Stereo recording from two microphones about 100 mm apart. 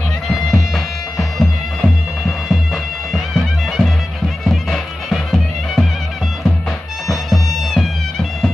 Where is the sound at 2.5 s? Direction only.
Centre (ahead or behind).